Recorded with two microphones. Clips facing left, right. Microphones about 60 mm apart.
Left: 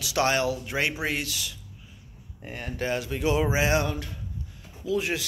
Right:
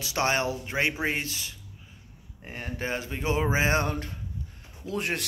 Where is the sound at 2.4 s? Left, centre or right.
Centre; by 4.2 s right.